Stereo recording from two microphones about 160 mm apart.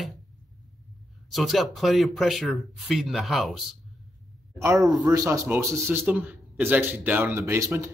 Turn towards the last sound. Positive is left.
turn(degrees=-15)  # may be behind; listen again after turning